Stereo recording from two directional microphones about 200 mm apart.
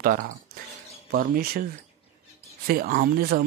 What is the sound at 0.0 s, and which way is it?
Speech, 45° right (ahead or behind).